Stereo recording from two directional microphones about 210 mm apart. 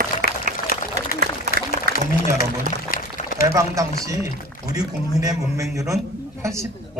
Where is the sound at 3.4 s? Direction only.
15° right (ahead or behind).